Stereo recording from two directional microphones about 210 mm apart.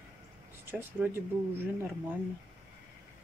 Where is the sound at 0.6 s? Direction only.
10° right (ahead or behind).